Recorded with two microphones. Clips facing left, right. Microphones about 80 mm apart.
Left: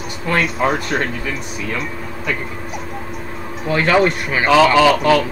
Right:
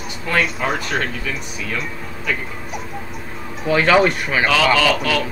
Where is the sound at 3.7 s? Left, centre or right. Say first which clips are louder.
Even; centre.